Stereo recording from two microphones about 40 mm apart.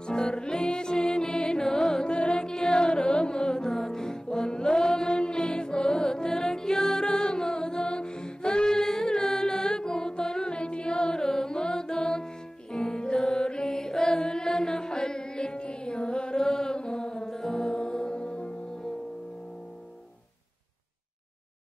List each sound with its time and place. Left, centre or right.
0.0 s music: left
2.0 s music: left
2.4 s music: centre
10.5 s music: left
16.3 s music: centre; by 18.6 s left